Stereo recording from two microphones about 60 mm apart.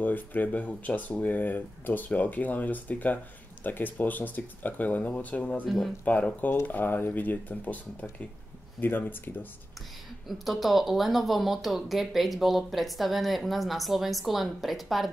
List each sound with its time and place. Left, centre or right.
0.0 s speech: left
10.2 s speech: centre